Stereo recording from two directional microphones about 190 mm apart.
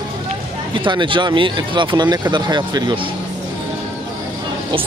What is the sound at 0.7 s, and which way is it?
Speech, 25° right (ahead or behind).